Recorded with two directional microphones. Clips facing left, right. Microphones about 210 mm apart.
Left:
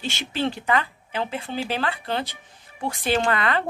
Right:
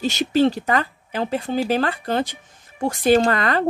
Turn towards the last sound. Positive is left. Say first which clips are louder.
# right 4 dB
turn(degrees=-40)  # may be behind; listen again after turning